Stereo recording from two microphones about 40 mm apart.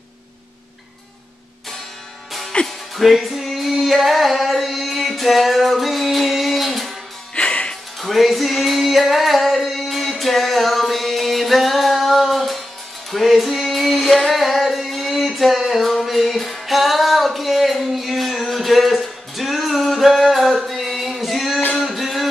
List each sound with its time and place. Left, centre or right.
2.6 s music: centre
7.3 s music: left
8.0 s female singing: centre
13.1 s music: centre
14.0 s female singing: centre
14.3 s music: centre